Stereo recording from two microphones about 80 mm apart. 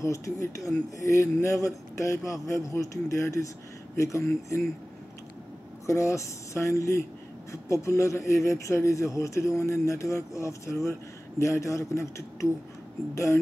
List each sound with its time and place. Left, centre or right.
0.0 s speech: left
5.9 s speech: left